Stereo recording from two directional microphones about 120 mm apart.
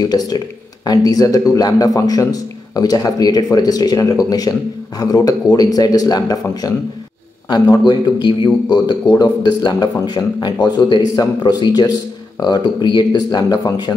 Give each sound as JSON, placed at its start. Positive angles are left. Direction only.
{"t": 0.0, "sound": "a man's voice", "side_deg": 35}